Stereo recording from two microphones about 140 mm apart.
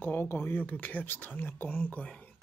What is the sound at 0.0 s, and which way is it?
Speech, 15° left (ahead or behind).